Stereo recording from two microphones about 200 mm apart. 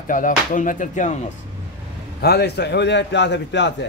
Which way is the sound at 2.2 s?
55° left (ahead or behind).